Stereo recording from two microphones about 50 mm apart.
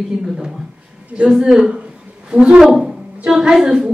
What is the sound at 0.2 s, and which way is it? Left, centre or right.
Speech, centre.